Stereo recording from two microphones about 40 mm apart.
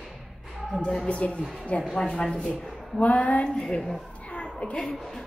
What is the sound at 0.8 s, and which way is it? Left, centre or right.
Speech, left.